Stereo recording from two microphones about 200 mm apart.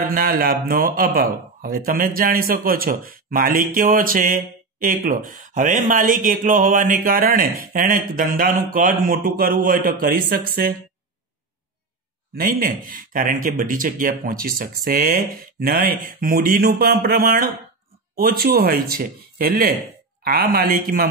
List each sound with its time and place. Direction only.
0.0 s speech: 45° right (ahead or behind)
12.4 s speech: 45° right (ahead or behind)